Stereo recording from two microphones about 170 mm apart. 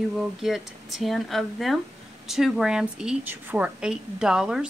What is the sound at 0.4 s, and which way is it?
Speech, centre (ahead or behind).